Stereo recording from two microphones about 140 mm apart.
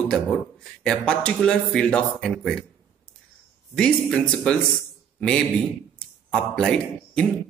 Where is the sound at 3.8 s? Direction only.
Centre (ahead or behind).